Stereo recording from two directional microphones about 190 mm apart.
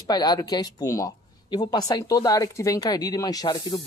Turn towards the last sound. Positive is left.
turn(degrees=20)  # may be behind; listen again after turning